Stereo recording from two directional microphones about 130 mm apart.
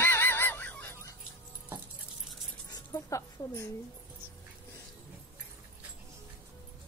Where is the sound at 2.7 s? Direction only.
25° left (ahead or behind).